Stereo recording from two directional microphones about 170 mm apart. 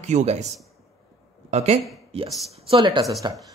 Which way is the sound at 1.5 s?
40° right (ahead or behind).